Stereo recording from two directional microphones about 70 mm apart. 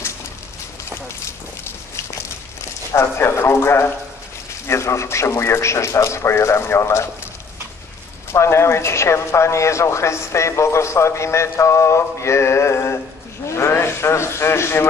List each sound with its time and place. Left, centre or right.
2.9 s a man's voice: left
8.3 s speech: left